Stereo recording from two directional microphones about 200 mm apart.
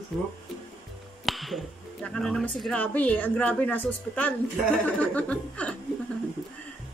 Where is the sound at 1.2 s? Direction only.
Centre (ahead or behind).